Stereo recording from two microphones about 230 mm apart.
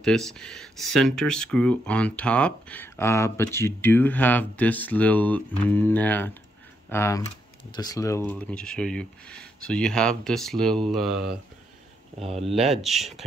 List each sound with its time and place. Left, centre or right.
0.0 s speech: centre
12.2 s speech: right
12.8 s speech: centre